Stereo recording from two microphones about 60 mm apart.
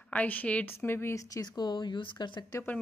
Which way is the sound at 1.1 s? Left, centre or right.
Left.